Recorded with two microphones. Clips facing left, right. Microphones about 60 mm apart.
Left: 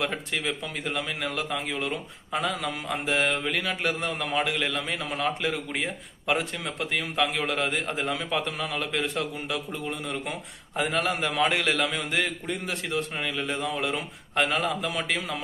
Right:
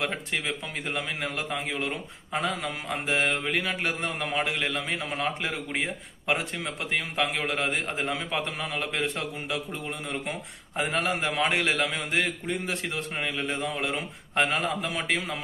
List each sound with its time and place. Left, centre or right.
0.3 s a man's voice: right